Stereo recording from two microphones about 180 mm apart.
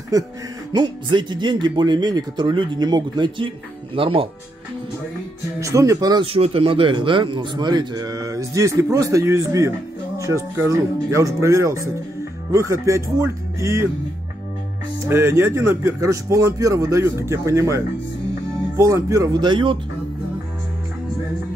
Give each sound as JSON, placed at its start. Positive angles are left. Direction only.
{"t": 0.1, "sound": "speech", "side_deg": -20}
{"t": 5.6, "sound": "speech", "side_deg": -15}
{"t": 15.0, "sound": "speech", "side_deg": -15}